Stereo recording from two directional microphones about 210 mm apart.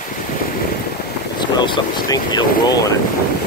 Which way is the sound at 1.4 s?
20° left (ahead or behind).